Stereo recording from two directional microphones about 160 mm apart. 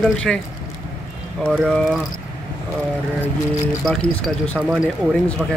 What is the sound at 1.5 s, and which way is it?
Speech, centre (ahead or behind).